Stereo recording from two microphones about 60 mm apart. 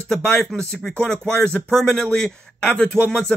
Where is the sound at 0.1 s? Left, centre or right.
Centre.